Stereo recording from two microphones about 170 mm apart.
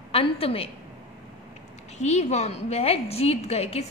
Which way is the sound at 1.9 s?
40° left (ahead or behind).